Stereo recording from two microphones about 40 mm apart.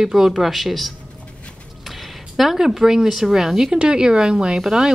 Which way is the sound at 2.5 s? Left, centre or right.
Centre.